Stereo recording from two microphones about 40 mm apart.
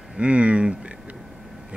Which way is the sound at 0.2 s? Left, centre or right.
Right.